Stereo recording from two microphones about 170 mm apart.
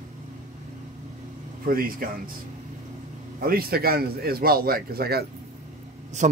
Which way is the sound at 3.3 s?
60° right (ahead or behind).